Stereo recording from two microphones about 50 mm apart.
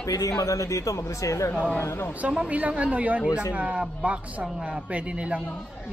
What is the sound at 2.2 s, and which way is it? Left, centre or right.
Speech, right.